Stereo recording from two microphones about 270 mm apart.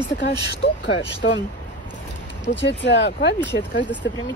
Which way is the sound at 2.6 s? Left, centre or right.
Left.